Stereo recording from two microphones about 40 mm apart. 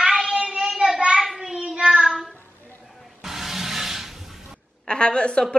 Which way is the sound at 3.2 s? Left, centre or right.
Centre.